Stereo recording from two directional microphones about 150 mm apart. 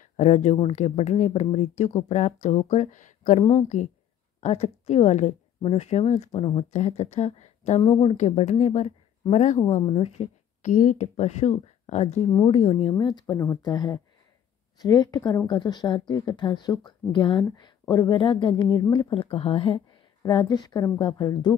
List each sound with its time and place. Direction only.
0.0 s speech: 50° left (ahead or behind)
9.8 s a woman's voice: 40° left (ahead or behind)
12.9 s a woman's voice: 25° left (ahead or behind)